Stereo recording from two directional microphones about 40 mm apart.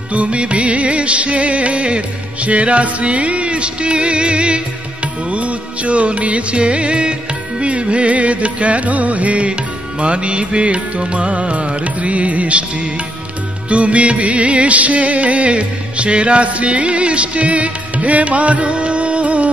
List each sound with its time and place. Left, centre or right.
0.1 s music: right
13.7 s music: right